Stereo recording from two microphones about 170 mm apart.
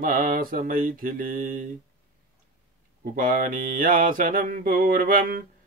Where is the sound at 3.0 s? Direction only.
55° right (ahead or behind).